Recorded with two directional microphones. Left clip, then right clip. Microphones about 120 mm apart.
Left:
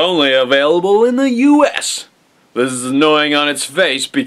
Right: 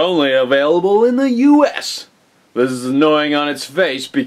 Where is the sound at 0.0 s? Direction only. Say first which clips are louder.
Left 2 dB; 15° left (ahead or behind).